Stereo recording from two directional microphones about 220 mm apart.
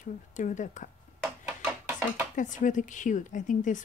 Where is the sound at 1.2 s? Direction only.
10° right (ahead or behind).